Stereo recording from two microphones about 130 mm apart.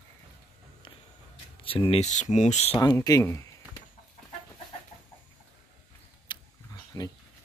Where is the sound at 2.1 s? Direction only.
65° left (ahead or behind).